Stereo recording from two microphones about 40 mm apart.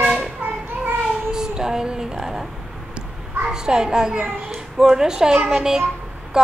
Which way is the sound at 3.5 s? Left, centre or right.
Centre.